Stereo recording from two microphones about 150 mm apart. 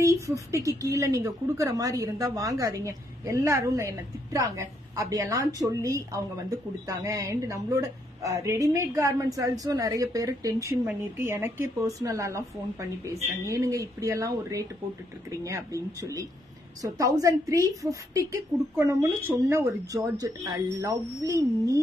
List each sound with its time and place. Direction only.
0.0 s a woman's voice: 20° right (ahead or behind)